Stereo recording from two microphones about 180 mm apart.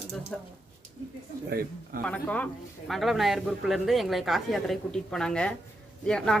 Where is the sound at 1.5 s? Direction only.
55° right (ahead or behind).